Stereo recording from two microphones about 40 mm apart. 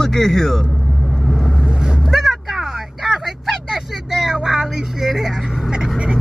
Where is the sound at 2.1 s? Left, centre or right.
Centre.